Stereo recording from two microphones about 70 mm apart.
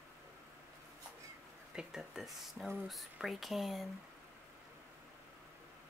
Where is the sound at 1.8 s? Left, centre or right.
Centre.